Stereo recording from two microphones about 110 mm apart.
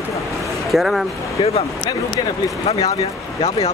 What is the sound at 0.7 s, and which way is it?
Speech, centre (ahead or behind).